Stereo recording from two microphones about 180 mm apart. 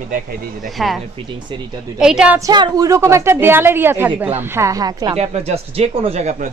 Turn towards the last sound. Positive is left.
turn(degrees=-40)  # may be behind; listen again after turning